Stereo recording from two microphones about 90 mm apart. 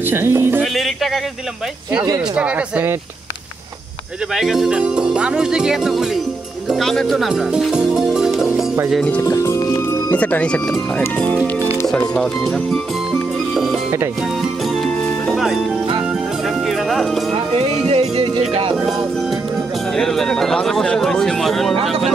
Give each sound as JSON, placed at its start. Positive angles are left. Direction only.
{"t": 0.1, "sound": "speech", "side_deg": -25}
{"t": 0.6, "sound": "speech", "side_deg": 0}
{"t": 2.3, "sound": "speech", "side_deg": -15}
{"t": 4.4, "sound": "speech", "side_deg": -5}
{"t": 6.8, "sound": "speech", "side_deg": 5}
{"t": 7.2, "sound": "music", "side_deg": -5}
{"t": 9.2, "sound": "speech", "side_deg": 35}
{"t": 9.6, "sound": "music", "side_deg": 50}
{"t": 10.1, "sound": "speech", "side_deg": 15}
{"t": 11.9, "sound": "speech", "side_deg": 10}
{"t": 15.2, "sound": "music", "side_deg": 0}
{"t": 16.6, "sound": "music", "side_deg": 0}
{"t": 17.6, "sound": "music", "side_deg": -80}
{"t": 20.0, "sound": "speech", "side_deg": 5}